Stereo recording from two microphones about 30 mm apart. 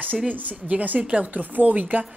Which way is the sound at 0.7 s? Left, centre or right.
Right.